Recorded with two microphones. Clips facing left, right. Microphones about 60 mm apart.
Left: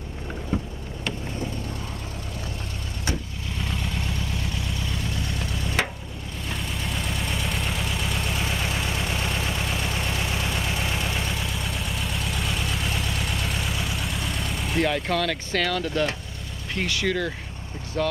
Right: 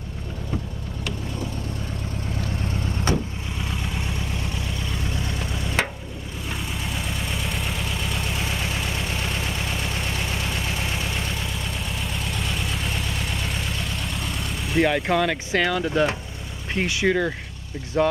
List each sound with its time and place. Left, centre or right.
3.7 s vehicle: centre
5.1 s vehicle: centre
16.7 s speech: centre